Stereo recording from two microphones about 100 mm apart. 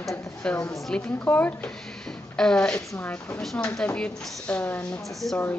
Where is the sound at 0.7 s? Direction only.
10° left (ahead or behind).